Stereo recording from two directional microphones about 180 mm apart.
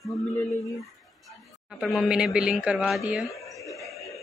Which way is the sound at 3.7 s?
Centre (ahead or behind).